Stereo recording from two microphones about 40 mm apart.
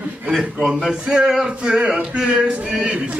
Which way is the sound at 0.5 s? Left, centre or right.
Centre.